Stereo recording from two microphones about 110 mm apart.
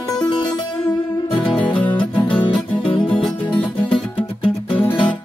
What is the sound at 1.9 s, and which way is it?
Music, 45° left (ahead or behind).